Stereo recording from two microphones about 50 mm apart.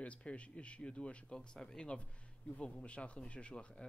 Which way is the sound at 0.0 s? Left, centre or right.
Left.